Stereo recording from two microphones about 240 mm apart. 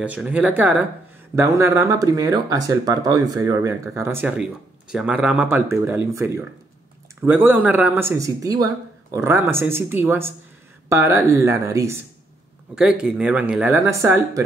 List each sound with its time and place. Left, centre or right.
0.0 s speech: centre